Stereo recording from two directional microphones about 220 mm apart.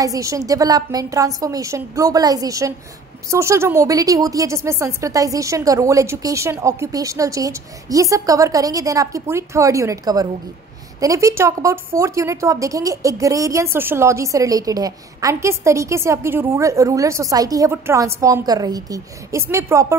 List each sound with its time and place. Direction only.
0.0 s a woman's voice: 15° right (ahead or behind)